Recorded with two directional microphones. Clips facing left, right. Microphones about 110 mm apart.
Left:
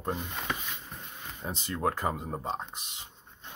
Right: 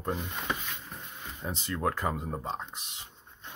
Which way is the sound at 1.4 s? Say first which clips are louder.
Even; 30° left (ahead or behind).